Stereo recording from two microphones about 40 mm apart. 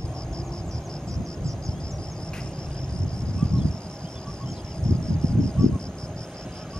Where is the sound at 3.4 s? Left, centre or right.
Left.